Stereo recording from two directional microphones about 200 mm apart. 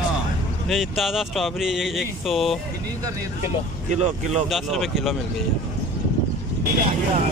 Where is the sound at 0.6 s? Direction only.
Centre (ahead or behind).